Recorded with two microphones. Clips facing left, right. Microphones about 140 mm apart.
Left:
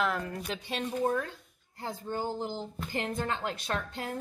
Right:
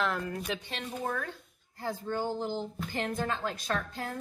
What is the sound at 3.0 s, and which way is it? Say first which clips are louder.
A woman's voice: right 1 dB; 25° left (ahead or behind).